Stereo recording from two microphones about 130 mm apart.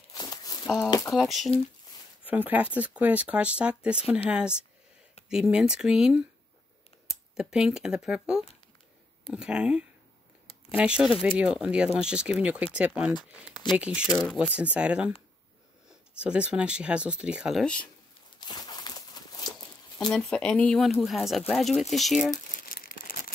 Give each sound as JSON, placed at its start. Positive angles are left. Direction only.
{"t": 0.1, "sound": "a sound", "side_deg": 30}
{"t": 1.1, "sound": "speech", "side_deg": 0}
{"t": 2.2, "sound": "speech", "side_deg": -10}
{"t": 16.2, "sound": "speech", "side_deg": -10}
{"t": 18.4, "sound": "a sound", "side_deg": 35}
{"t": 20.1, "sound": "speech", "side_deg": 5}
{"t": 22.3, "sound": "crumpling", "side_deg": 85}